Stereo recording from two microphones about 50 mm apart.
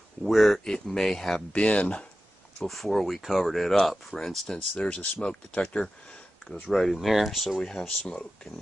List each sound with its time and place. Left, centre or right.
0.2 s speech: centre
1.5 s speech: left
2.6 s speech: centre
4.6 s speech: left
6.7 s speech: centre